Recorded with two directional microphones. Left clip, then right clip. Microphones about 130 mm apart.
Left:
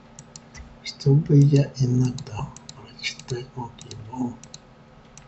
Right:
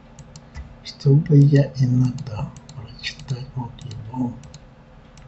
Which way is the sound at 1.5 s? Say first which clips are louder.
Right 3 dB; centre (ahead or behind).